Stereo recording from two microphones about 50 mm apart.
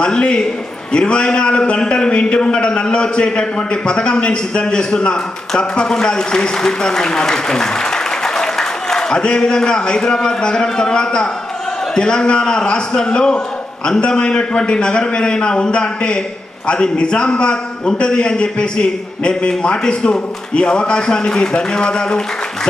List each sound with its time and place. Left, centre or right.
0.0 s a man's voice: centre